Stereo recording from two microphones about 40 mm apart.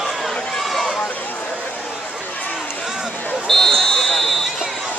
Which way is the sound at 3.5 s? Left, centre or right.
Centre.